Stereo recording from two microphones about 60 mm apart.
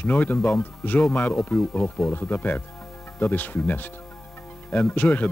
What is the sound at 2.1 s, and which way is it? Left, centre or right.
Speech, left.